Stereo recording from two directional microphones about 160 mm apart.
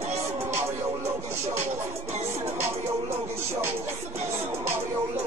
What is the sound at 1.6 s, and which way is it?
Music, 45° right (ahead or behind).